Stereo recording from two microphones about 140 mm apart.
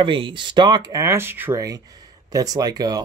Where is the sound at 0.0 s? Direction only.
35° right (ahead or behind).